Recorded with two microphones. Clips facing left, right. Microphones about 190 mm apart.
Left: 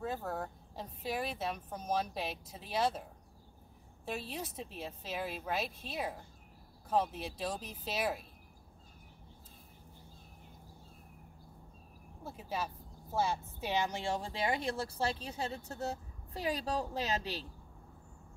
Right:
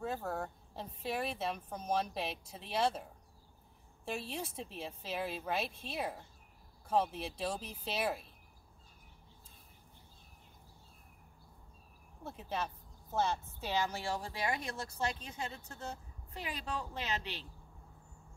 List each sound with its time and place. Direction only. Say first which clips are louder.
0.0 s speech: even; centre (ahead or behind)
12.2 s speech: even; 5° left (ahead or behind); by 17.5 s 40° left (ahead or behind)